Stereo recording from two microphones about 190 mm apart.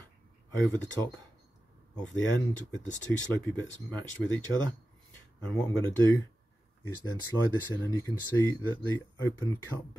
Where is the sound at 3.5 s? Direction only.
10° left (ahead or behind).